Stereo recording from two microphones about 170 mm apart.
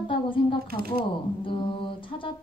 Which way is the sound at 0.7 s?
60° right (ahead or behind).